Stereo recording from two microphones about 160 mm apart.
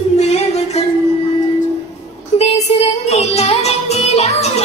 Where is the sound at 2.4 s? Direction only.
40° left (ahead or behind).